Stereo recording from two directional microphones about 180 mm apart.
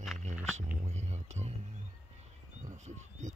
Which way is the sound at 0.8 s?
40° right (ahead or behind).